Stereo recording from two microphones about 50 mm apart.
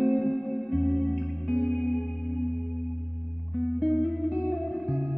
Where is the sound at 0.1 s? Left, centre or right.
Centre.